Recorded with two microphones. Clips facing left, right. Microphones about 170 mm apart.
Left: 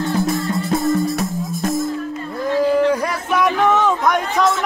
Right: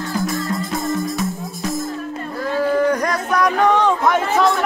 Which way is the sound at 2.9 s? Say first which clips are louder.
Even; 5° left (ahead or behind).